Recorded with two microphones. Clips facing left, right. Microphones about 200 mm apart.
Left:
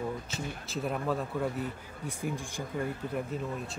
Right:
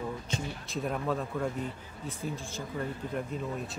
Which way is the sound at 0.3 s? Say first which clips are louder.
Right 1 dB; centre (ahead or behind).